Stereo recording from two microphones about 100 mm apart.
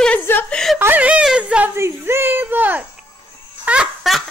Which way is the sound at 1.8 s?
25° right (ahead or behind).